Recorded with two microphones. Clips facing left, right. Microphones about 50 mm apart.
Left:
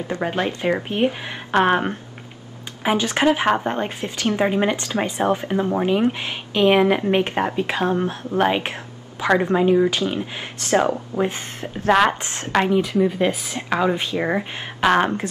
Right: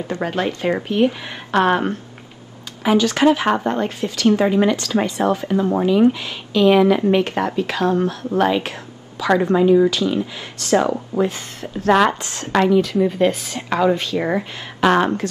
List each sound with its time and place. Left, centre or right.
0.2 s speech: left
11.9 s speech: centre
12.2 s speech: left
12.5 s speech: centre
13.0 s speech: centre
15.0 s speech: centre